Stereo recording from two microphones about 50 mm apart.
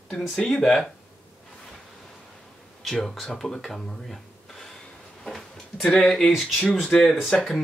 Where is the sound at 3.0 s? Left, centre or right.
Centre.